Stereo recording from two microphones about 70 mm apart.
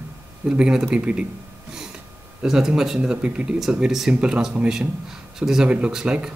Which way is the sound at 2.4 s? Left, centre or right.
Centre.